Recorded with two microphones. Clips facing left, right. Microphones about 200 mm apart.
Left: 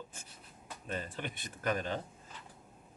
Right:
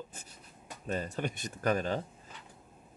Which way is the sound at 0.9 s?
45° right (ahead or behind).